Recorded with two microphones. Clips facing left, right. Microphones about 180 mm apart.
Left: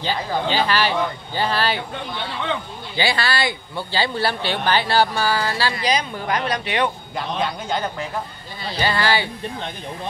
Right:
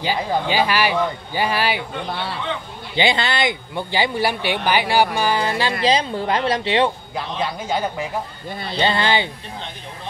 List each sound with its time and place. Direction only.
0.0 s speech: 10° right (ahead or behind)
3.0 s speech: 20° right (ahead or behind)
7.2 s speech: 5° right (ahead or behind)
8.7 s speech: 25° right (ahead or behind)